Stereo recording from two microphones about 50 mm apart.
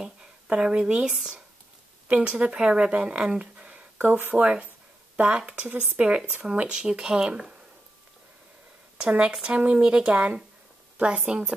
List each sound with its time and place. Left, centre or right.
0.5 s speech: right
4.1 s speech: right
5.5 s speech: right
8.9 s speech: right
9.5 s speech: right
9.8 s a woman's voice: centre